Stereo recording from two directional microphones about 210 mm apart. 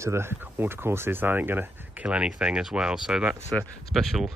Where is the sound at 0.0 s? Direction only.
10° right (ahead or behind).